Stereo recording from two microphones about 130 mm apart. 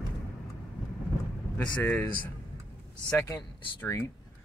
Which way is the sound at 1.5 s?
15° left (ahead or behind).